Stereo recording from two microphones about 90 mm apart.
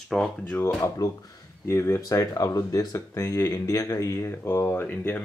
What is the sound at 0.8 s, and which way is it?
Speech, 40° left (ahead or behind).